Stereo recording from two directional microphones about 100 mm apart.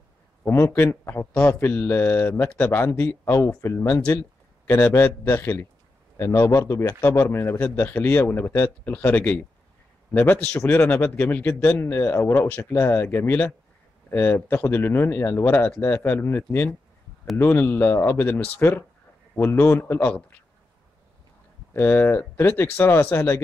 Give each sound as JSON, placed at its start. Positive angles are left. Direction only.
{"t": 0.4, "sound": "speech", "side_deg": 25}
{"t": 21.7, "sound": "speech", "side_deg": 20}